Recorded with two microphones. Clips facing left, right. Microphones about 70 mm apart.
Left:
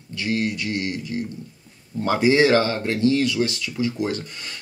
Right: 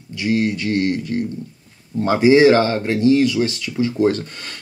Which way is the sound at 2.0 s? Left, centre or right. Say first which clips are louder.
Right 6 dB; centre.